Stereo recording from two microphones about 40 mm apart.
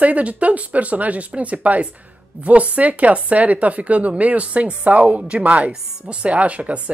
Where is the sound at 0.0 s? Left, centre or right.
Right.